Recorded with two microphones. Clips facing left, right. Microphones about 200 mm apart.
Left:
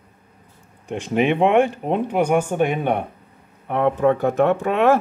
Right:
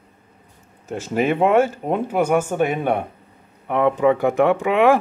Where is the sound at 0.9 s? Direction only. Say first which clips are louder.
Left 1 dB; 5° right (ahead or behind).